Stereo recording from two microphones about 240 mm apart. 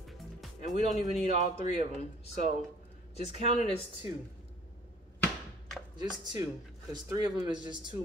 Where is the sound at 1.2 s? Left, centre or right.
Left.